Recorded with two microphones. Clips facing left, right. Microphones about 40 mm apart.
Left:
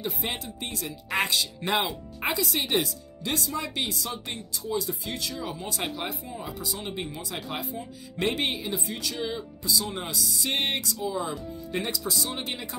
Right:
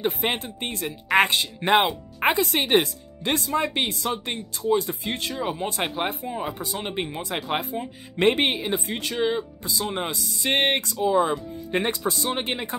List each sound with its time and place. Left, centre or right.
0.0 s speech: right